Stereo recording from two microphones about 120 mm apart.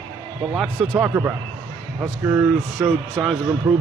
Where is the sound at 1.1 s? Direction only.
20° right (ahead or behind).